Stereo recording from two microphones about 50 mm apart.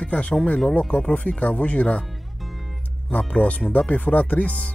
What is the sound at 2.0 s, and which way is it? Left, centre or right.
Music, centre.